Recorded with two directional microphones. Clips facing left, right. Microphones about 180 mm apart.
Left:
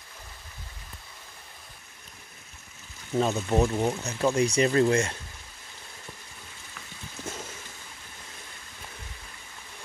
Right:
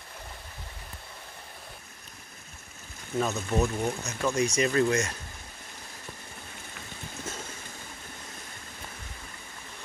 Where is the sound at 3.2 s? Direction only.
30° left (ahead or behind).